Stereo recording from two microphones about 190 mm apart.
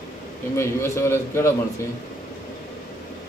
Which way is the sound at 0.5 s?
15° left (ahead or behind).